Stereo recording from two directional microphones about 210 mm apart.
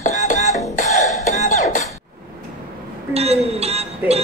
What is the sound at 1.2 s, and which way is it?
Beatboxing, 35° left (ahead or behind).